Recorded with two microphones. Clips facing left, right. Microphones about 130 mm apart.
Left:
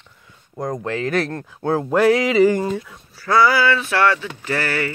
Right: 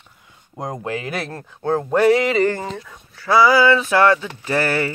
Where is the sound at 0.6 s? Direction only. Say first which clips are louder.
Left 2 dB; 15° right (ahead or behind).